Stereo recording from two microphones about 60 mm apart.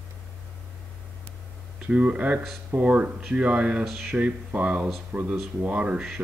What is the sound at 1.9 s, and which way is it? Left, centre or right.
Speech, right.